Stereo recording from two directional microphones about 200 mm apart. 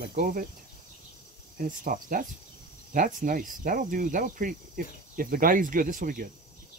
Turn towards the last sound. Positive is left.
turn(degrees=-45)  # may be behind; listen again after turning